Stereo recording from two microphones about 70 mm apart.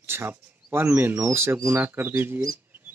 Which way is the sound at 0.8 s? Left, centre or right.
Right.